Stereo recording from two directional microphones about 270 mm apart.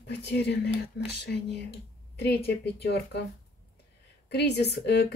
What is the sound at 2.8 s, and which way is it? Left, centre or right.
Speech, left.